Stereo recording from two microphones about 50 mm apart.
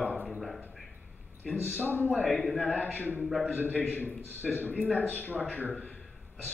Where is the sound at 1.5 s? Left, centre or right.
Left.